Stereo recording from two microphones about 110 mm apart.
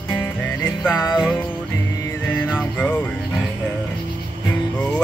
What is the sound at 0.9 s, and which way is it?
Music, 30° left (ahead or behind).